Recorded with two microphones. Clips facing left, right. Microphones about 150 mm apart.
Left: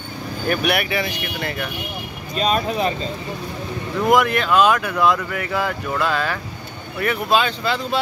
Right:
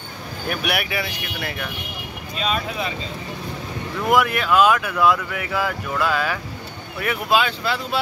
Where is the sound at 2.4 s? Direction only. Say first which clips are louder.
Left 5 dB; 40° left (ahead or behind).